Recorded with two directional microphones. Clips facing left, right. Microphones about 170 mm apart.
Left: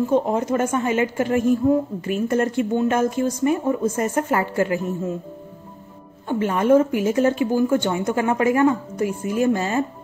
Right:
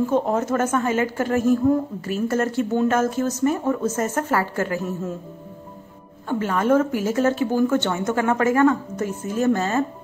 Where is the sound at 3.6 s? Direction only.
15° left (ahead or behind).